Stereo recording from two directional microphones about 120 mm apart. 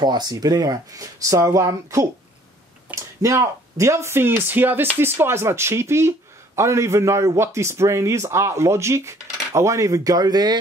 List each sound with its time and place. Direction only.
0.0 s speech: 35° right (ahead or behind)